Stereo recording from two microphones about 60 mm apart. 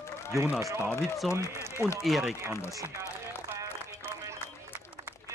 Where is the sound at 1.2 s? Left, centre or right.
Centre.